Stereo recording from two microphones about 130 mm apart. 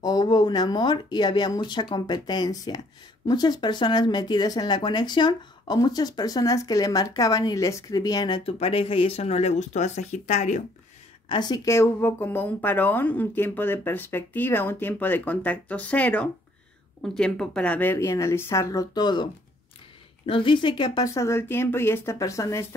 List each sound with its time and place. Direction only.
0.0 s speech: 30° left (ahead or behind)
8.5 s speech: 45° left (ahead or behind); by 10.6 s 70° left (ahead or behind)
11.2 s speech: 35° left (ahead or behind)
20.2 s speech: 40° left (ahead or behind)
21.1 s speech: 20° left (ahead or behind)